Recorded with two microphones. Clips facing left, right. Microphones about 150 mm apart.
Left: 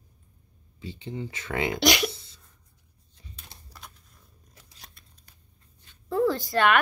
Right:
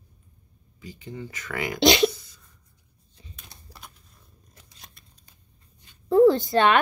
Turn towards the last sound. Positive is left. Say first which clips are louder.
# right 3 dB
turn(degrees=-25)  # may be behind; listen again after turning